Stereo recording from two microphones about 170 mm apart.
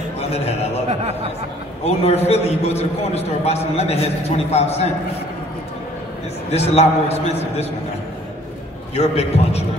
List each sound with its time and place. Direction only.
0.3 s a man's voice: 40° left (ahead or behind)
1.9 s a man's voice: 40° left (ahead or behind)
6.5 s a man's voice: 40° left (ahead or behind)
8.9 s a man's voice: 35° left (ahead or behind)